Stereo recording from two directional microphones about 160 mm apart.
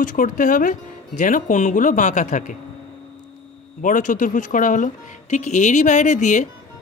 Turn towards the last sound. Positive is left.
turn(degrees=50)  # may be behind; listen again after turning